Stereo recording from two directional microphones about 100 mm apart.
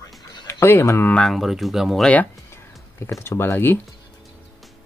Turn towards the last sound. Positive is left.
turn(degrees=20)  # may be behind; listen again after turning